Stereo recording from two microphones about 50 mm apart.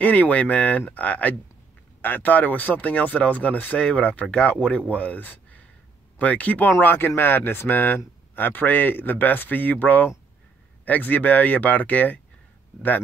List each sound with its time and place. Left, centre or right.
0.0 s speech: left
6.8 s speech: left